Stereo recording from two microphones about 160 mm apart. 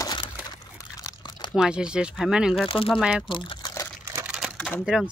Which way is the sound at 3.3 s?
30° left (ahead or behind).